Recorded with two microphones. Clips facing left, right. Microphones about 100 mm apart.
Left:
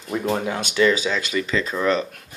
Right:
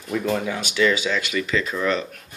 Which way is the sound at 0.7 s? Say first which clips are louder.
Left 2 dB; 35° left (ahead or behind).